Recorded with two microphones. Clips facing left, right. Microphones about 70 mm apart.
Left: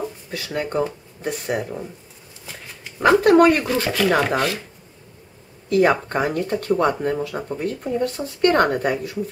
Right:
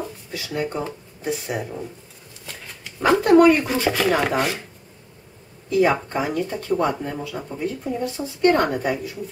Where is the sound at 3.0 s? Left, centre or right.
Left.